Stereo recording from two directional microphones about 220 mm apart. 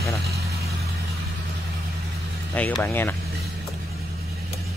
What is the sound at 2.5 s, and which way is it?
Speech, 5° left (ahead or behind).